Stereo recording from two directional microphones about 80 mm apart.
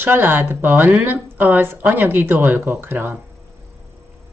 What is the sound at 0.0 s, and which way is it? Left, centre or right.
Speech, right.